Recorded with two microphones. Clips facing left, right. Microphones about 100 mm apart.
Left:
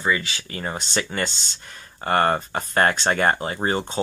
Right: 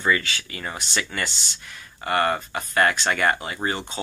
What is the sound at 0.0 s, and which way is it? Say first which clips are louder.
Speech: right 1 dB; 20° left (ahead or behind).